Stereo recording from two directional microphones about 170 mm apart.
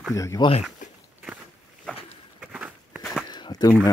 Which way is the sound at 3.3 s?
25° left (ahead or behind).